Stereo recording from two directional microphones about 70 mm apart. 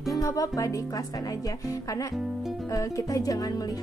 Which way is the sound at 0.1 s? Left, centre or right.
Left.